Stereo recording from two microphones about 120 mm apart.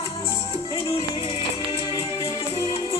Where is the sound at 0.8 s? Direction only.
55° left (ahead or behind).